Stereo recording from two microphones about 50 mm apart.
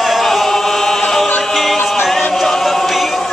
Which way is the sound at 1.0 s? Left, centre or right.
Centre.